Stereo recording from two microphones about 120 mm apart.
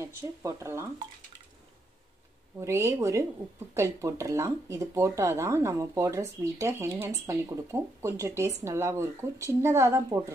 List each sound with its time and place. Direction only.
0.0 s speech: 25° right (ahead or behind)
2.6 s speech: 25° right (ahead or behind)